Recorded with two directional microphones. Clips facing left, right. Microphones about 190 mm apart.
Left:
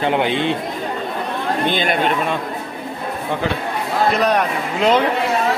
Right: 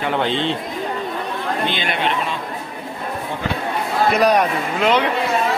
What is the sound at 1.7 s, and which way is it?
Speech, 45° left (ahead or behind).